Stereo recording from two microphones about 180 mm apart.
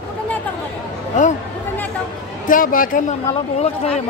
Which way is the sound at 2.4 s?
50° left (ahead or behind).